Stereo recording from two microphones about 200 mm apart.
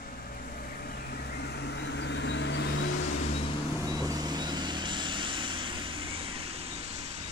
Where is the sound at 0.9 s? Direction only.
55° left (ahead or behind).